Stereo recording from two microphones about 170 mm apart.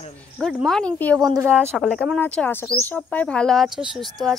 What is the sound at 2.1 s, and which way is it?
A woman's voice, 10° left (ahead or behind).